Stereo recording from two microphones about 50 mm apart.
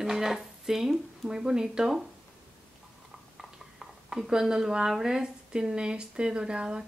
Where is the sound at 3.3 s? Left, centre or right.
Centre.